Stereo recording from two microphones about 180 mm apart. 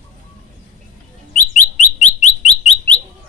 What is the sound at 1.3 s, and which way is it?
Bird, 40° left (ahead or behind).